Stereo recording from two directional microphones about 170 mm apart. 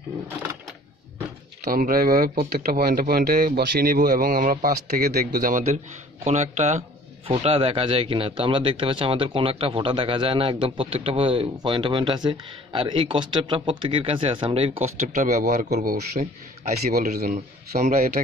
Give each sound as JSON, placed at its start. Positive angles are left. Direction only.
{"t": 1.6, "sound": "speech", "side_deg": -55}
{"t": 6.2, "sound": "a man's voice", "side_deg": -40}
{"t": 15.7, "sound": "a man's voice", "side_deg": -60}